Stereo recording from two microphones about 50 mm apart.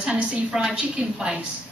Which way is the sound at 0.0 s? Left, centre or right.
Centre.